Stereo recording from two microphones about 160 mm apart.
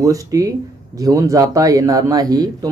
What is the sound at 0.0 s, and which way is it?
Speech, 20° right (ahead or behind).